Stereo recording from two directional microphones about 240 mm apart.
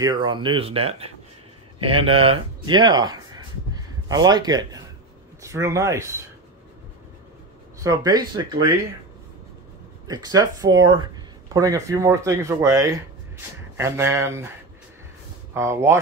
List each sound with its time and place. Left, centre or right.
0.0 s speech: centre
7.8 s speech: centre
10.0 s speech: centre
15.5 s speech: centre